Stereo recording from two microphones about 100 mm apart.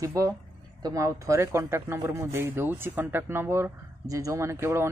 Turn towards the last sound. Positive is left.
turn(degrees=-25)  # may be behind; listen again after turning